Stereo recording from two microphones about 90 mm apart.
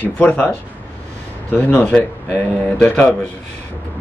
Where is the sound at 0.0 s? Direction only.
15° left (ahead or behind).